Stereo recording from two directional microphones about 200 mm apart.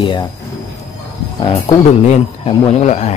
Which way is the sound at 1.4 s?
25° left (ahead or behind).